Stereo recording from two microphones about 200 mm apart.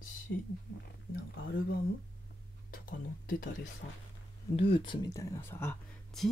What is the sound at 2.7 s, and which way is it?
Speech, 45° left (ahead or behind).